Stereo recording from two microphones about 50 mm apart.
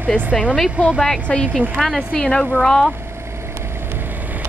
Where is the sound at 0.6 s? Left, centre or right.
Right.